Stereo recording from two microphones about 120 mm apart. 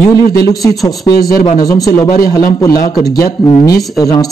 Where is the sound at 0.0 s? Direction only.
30° left (ahead or behind).